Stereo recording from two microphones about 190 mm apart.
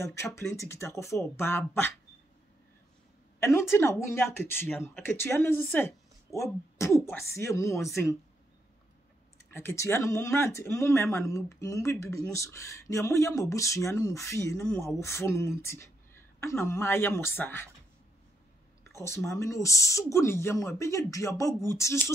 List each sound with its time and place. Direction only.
0.0 s speech: 15° left (ahead or behind)
3.3 s speech: 15° left (ahead or behind)
9.5 s speech: 10° left (ahead or behind)
18.9 s speech: 15° left (ahead or behind)